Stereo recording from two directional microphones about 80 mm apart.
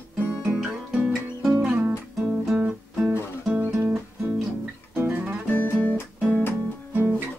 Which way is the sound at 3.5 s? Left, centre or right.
Centre.